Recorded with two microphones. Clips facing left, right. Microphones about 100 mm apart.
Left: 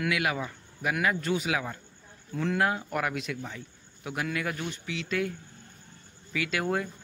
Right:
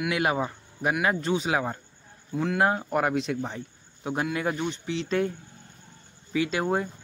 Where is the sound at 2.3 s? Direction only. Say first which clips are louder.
Right 2 dB; 10° right (ahead or behind).